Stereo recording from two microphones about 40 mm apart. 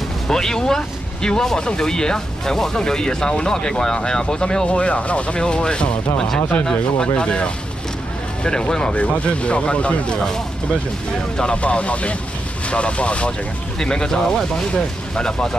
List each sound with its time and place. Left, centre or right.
0.3 s speech: centre
4.6 s speech: left
8.9 s speech: left
11.3 s speech: left
13.7 s speech: centre